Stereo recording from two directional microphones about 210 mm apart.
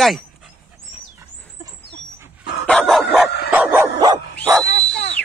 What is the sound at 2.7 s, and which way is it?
Dog, centre (ahead or behind).